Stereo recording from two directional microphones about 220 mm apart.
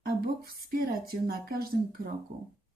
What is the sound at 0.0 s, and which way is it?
Speech, 45° right (ahead or behind).